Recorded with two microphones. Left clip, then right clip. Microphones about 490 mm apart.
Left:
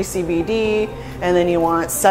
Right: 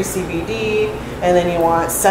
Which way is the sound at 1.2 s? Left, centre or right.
Left.